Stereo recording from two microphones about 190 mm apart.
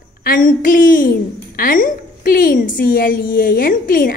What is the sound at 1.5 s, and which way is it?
A woman's voice, 50° left (ahead or behind).